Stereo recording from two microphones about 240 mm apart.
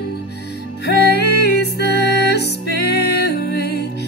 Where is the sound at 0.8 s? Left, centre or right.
Left.